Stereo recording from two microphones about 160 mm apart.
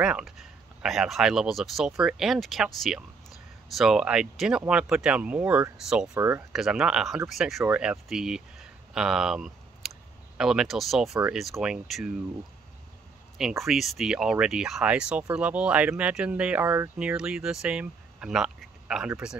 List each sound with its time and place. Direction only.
0.0 s speech: 5° right (ahead or behind)
6.1 s speech: 15° right (ahead or behind)
6.5 s speech: centre (ahead or behind)
13.4 s speech: 5° right (ahead or behind)